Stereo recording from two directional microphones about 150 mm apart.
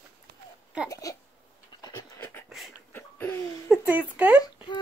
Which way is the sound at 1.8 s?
25° left (ahead or behind).